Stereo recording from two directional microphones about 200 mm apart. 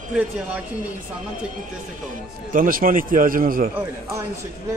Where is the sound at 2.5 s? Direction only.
45° right (ahead or behind).